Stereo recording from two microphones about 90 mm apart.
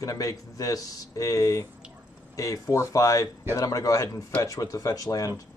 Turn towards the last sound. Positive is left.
turn(degrees=40)  # may be behind; listen again after turning